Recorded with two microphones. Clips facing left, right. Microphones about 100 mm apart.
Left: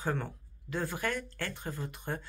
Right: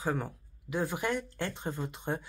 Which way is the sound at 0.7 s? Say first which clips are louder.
Right 2 dB; 15° right (ahead or behind).